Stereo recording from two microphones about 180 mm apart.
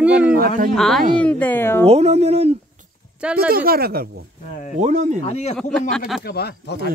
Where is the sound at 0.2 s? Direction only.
55° right (ahead or behind).